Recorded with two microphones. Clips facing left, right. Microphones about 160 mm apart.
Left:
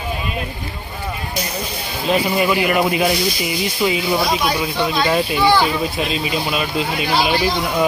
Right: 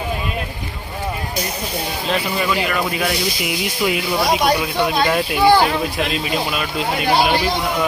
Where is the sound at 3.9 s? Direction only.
60° right (ahead or behind).